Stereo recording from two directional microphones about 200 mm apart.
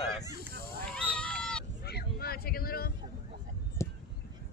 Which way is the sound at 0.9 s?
5° left (ahead or behind).